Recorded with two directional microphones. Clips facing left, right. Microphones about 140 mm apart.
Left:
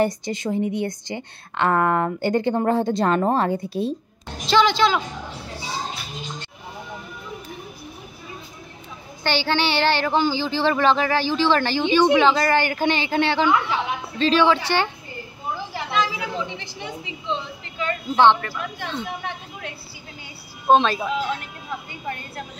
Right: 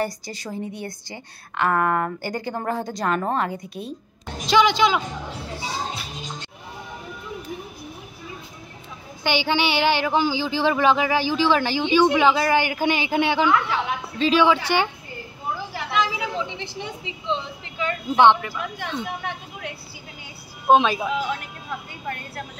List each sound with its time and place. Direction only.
0.0 s a woman's voice: 20° left (ahead or behind)
4.5 s speech: 15° right (ahead or behind)
9.2 s speech: 15° right (ahead or behind)
15.9 s a sound: 15° right (ahead or behind)
17.3 s speech: 15° right (ahead or behind)